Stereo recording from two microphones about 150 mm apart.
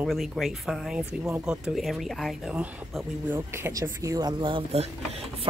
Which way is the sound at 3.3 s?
15° right (ahead or behind).